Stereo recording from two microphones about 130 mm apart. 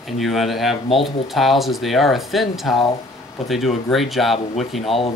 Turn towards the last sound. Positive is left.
turn(degrees=0)  # may be behind; listen again after turning